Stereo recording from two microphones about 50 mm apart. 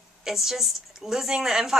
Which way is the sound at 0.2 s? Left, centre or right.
Centre.